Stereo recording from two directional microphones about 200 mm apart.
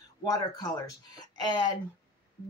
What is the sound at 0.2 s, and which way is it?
Speech, 20° left (ahead or behind).